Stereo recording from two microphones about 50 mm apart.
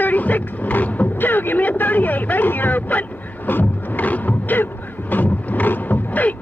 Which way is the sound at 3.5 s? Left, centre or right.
Left.